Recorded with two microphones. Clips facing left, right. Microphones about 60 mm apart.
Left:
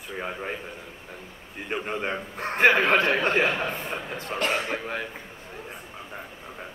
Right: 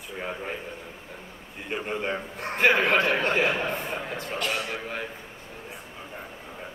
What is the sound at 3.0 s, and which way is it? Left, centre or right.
Speech, centre.